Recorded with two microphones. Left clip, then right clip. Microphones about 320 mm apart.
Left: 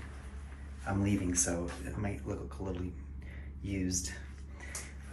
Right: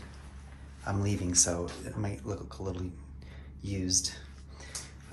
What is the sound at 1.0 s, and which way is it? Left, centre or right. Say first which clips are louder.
Speech: right 5 dB; right.